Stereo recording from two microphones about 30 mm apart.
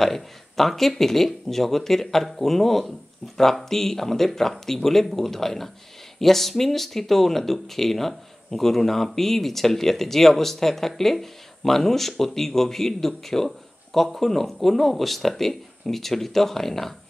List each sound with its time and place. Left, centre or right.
0.0 s speech: centre